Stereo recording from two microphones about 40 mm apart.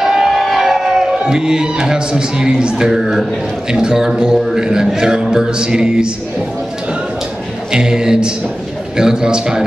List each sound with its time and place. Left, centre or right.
0.0 s emergency vehicle: centre
0.4 s a sound: centre
1.2 s a man's voice: centre
7.7 s speech: centre